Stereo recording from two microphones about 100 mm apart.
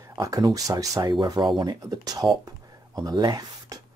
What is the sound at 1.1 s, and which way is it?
Speech, 50° right (ahead or behind).